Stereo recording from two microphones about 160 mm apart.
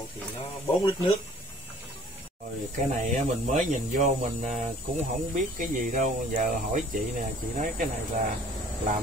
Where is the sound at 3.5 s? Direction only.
50° right (ahead or behind).